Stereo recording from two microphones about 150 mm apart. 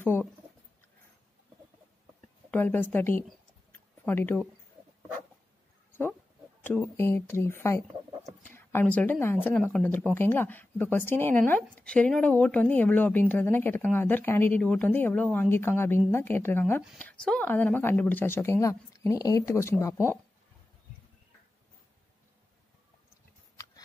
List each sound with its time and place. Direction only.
0.0 s speech: 10° left (ahead or behind)
2.5 s speech: 15° left (ahead or behind)
6.6 s speech: 10° left (ahead or behind)